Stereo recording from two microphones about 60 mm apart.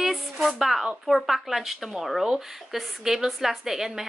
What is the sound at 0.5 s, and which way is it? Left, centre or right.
Speech, centre.